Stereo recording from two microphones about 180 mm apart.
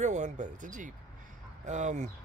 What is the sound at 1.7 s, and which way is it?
Speech, 40° right (ahead or behind).